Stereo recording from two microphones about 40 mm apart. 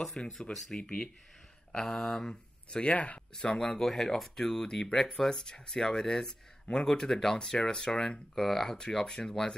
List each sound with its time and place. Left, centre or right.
0.0 s speech: centre
0.3 s speech: centre
0.7 s speech: left
1.7 s speech: centre
2.8 s speech: left
3.6 s speech: centre